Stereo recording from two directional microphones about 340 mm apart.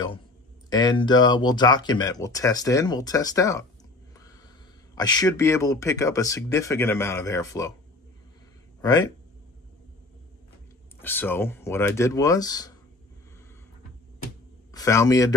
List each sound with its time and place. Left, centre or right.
0.7 s speech: centre
4.9 s speech: centre
8.8 s speech: centre
11.0 s speech: centre
14.7 s speech: centre